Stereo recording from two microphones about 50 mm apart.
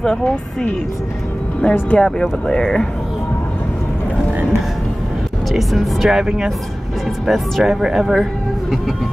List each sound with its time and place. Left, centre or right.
0.0 s speech: centre
5.5 s speech: centre
7.2 s speech: centre